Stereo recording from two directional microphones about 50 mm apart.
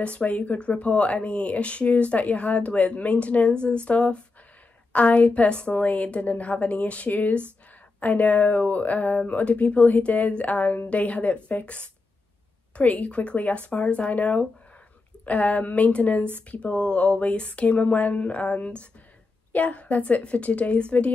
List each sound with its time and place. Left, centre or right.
0.0 s speech: left